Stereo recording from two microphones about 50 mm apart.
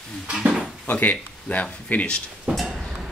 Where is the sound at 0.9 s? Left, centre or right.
Left.